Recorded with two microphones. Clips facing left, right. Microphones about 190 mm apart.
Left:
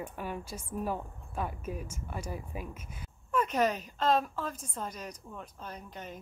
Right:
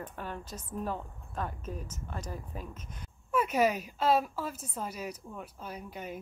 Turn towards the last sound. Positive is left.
turn(degrees=-10)  # may be behind; listen again after turning